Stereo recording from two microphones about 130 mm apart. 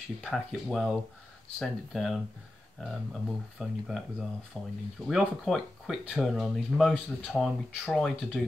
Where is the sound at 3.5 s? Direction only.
5° right (ahead or behind).